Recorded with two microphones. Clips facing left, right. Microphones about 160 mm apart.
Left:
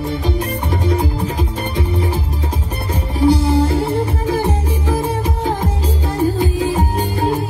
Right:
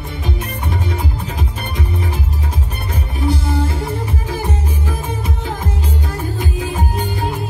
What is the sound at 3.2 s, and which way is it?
Music, 30° left (ahead or behind).